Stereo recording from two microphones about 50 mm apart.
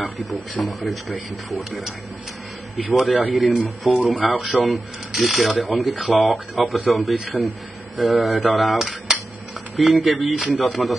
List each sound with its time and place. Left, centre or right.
0.0 s speech: centre
4.0 s speech: right
4.4 s speech: centre